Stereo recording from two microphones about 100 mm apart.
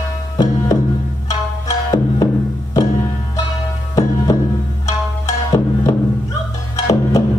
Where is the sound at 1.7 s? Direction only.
35° left (ahead or behind).